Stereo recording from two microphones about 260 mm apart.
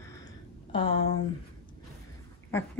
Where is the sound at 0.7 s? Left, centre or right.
Left.